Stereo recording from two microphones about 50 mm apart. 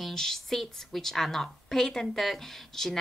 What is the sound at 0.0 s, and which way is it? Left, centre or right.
A woman's voice, centre.